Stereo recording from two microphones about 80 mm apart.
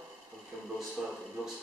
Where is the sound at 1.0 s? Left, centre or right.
Centre.